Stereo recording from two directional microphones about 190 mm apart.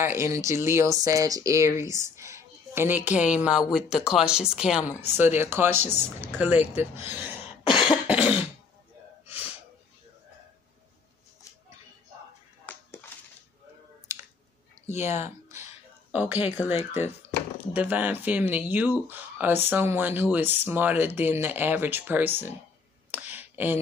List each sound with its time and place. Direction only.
0.0 s speech: 15° right (ahead or behind)
5.8 s speech: 35° left (ahead or behind)
6.2 s speech: 10° right (ahead or behind)
7.1 s throat clearing: 10° right (ahead or behind)
7.6 s cough: 25° left (ahead or behind)
8.1 s cough: 5° right (ahead or behind)
9.3 s sneeze: 10° right (ahead or behind)
12.7 s a sound: 10° left (ahead or behind)
14.9 s speech: 35° left (ahead or behind)
16.1 s speech: 10° right (ahead or behind)
16.7 s speech: 35° left (ahead or behind)
17.7 s speech: 10° right (ahead or behind)
23.1 s a sound: 10° right (ahead or behind)